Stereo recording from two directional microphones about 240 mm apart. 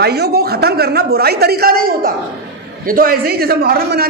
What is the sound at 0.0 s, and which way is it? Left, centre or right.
A man's voice, right.